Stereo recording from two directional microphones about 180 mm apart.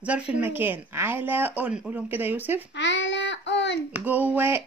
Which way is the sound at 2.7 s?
85° left.